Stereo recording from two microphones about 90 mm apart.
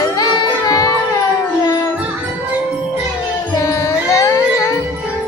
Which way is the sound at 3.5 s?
40° left (ahead or behind).